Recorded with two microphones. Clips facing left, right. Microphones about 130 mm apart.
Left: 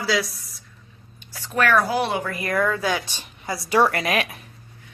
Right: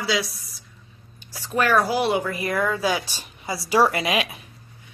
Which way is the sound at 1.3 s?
15° right (ahead or behind).